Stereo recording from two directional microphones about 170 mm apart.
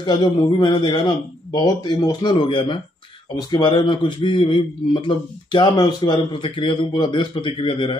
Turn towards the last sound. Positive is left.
turn(degrees=30)  # may be behind; listen again after turning